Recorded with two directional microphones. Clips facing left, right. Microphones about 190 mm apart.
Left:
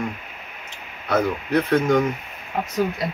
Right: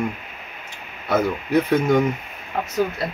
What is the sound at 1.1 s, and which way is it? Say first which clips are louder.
Speech: right 1 dB; 10° right (ahead or behind).